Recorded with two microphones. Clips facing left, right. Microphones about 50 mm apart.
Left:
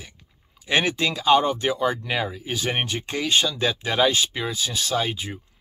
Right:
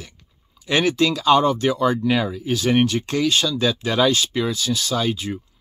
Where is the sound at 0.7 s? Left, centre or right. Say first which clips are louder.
Right 4 dB; left.